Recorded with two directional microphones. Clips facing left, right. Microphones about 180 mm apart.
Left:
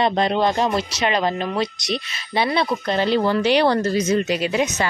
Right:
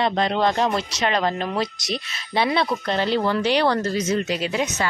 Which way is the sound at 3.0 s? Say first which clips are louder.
Left 3 dB; 15° left (ahead or behind).